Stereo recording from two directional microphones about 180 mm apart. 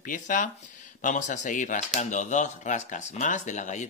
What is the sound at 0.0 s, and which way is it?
Speech, 45° left (ahead or behind).